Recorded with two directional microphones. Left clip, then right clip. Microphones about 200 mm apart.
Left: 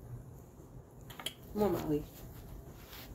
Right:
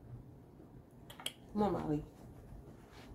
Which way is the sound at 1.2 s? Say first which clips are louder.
Left 2 dB; 65° left (ahead or behind).